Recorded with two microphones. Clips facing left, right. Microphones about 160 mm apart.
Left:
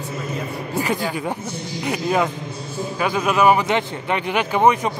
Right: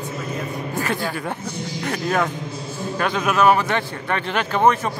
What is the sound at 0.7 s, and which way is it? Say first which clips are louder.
A man's voice: left 3 dB; 15° left (ahead or behind).